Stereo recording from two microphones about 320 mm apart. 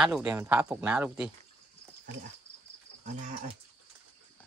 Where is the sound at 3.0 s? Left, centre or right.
Right.